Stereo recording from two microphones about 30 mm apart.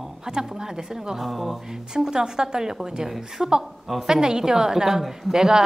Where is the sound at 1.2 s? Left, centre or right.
Centre.